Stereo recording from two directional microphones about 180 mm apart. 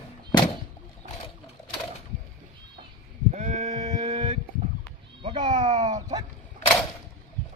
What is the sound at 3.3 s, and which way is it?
Sheep, 40° right (ahead or behind).